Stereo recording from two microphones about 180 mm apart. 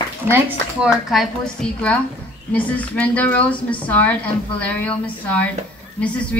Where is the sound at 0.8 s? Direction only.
Centre (ahead or behind).